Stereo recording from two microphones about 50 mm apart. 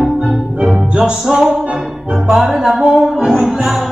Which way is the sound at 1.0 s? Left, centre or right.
Centre.